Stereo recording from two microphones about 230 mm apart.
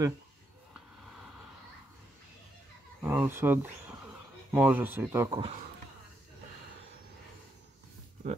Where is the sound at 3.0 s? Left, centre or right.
Centre.